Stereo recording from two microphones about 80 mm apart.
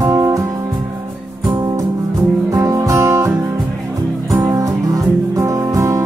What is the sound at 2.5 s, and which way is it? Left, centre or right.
Music, right.